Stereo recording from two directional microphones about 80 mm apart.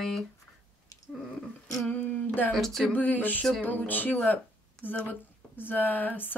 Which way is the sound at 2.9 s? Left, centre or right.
Left.